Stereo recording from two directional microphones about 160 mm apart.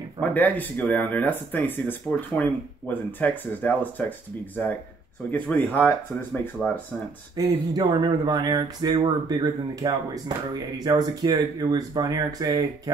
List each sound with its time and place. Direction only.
0.2 s speech: 10° left (ahead or behind)
5.3 s speech: 10° left (ahead or behind)
7.3 s speech: 25° right (ahead or behind)